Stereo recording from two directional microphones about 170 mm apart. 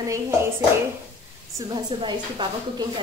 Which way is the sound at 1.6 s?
25° right (ahead or behind).